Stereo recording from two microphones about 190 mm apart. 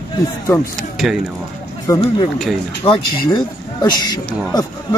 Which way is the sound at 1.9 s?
15° left (ahead or behind).